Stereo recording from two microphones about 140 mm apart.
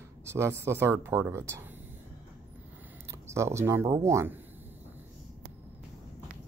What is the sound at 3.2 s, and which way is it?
Speech, 20° right (ahead or behind).